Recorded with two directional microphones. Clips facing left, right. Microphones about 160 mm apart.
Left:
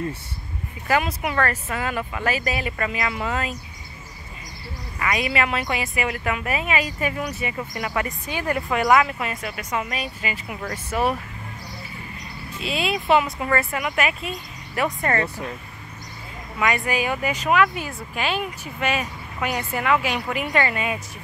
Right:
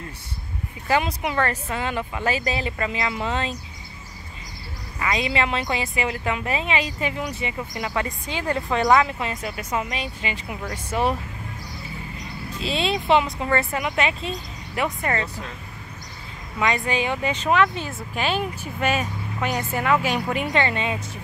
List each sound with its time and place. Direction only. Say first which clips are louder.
0.8 s speech: even; 20° right (ahead or behind)
4.9 s speech: even; 25° right (ahead or behind)
10.6 s speech: even; 15° right (ahead or behind)
12.5 s speech: right 1 dB; 30° right (ahead or behind)
16.5 s speech: even; 25° right (ahead or behind)
18.1 s speech: right 1 dB; centre (ahead or behind)
20.3 s speech: even; 25° right (ahead or behind)